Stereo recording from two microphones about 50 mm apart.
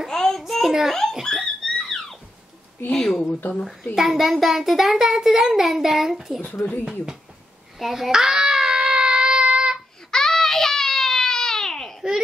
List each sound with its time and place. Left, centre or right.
0.0 s child singing: centre
0.4 s a child's voice: centre
1.2 s a sound: centre
2.9 s speech: centre
3.9 s a child's voice: centre
6.4 s speech: left
6.8 s a child's voice: centre
7.8 s a sound: centre
10.1 s baby cry: centre